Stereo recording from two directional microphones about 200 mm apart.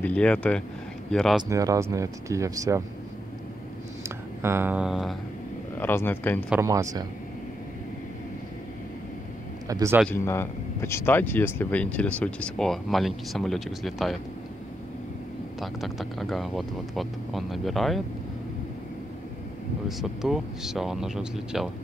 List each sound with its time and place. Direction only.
0.0 s speech: 5° left (ahead or behind)
1.5 s speech: 15° right (ahead or behind)
4.4 s speech: 10° right (ahead or behind)
5.8 s speech: 10° left (ahead or behind)
6.5 s speech: 15° right (ahead or behind)
9.7 s a man's voice: 15° right (ahead or behind)
10.0 s speech: 10° left (ahead or behind)
15.6 s speech: centre (ahead or behind)
19.9 s speech: centre (ahead or behind)